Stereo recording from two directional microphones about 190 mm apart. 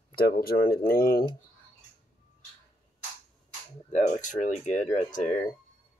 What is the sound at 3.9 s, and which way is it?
Speech, 40° left (ahead or behind).